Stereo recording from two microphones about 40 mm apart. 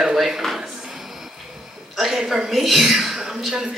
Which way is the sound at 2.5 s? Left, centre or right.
Centre.